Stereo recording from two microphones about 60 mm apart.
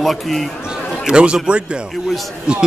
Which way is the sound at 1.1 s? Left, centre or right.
Centre.